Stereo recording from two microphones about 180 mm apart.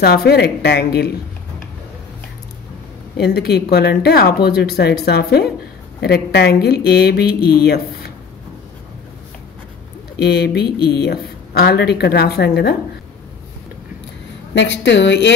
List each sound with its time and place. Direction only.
0.0 s speech: 60° left (ahead or behind)
3.2 s speech: 65° left (ahead or behind)
10.2 s speech: 65° left (ahead or behind)
14.5 s a woman's voice: 80° left